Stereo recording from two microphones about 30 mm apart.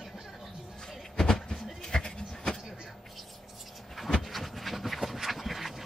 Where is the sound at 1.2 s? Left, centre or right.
Left.